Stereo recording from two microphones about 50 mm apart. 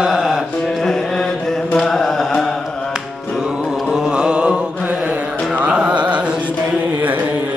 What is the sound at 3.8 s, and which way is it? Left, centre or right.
Mantra, centre.